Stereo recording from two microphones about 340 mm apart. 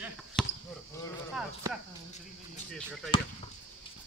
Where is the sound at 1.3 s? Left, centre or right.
Centre.